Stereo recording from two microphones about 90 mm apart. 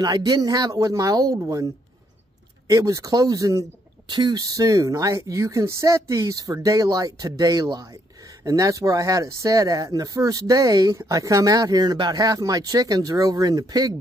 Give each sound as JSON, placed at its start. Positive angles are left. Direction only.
{"t": 0.0, "sound": "speech", "side_deg": -45}
{"t": 2.7, "sound": "speech", "side_deg": -40}
{"t": 4.1, "sound": "speech", "side_deg": -55}